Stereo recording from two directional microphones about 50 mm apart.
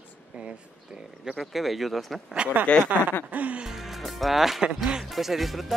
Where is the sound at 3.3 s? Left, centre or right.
Right.